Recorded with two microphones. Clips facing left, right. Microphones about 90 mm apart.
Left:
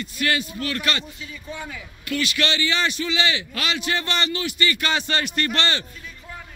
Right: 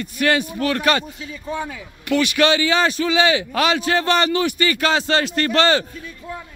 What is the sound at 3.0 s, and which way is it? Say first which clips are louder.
Speech: right 7 dB; 90° right.